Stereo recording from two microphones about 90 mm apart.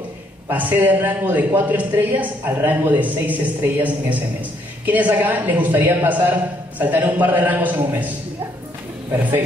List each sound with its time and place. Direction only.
0.5 s a man's voice: 20° right (ahead or behind)